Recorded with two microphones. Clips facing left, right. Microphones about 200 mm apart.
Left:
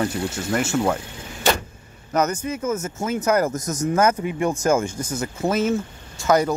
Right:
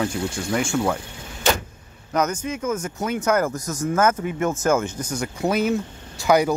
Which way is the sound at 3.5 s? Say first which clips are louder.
Left 2 dB; 20° left (ahead or behind).